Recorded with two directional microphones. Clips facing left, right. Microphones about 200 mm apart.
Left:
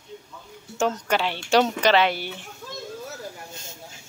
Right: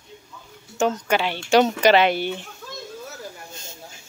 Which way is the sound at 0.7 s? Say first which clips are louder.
Right 2 dB; centre (ahead or behind).